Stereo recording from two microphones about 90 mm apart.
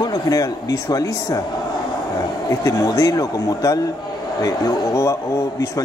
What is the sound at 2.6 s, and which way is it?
A man's voice, 40° left (ahead or behind).